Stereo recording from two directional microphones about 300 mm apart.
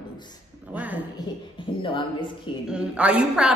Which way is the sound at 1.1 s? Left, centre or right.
Centre.